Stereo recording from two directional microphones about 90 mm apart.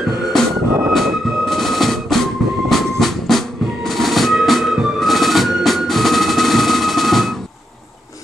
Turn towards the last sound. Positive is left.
turn(degrees=0)  # may be behind; listen again after turning